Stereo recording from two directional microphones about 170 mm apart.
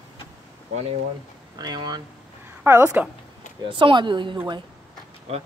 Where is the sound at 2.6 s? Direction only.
15° right (ahead or behind).